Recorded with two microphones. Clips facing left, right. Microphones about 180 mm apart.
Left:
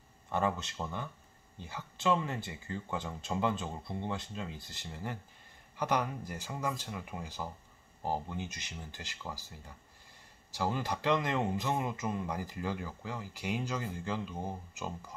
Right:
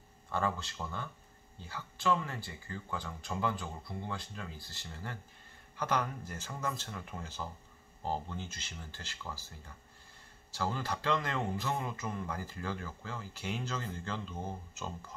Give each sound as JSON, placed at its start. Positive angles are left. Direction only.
{"t": 0.3, "sound": "a man's voice", "side_deg": 20}
{"t": 10.5, "sound": "a man's voice", "side_deg": 15}